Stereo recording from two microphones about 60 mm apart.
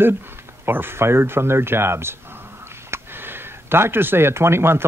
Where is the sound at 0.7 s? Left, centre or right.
Right.